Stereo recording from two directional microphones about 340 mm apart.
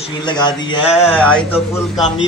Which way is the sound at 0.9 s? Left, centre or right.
Centre.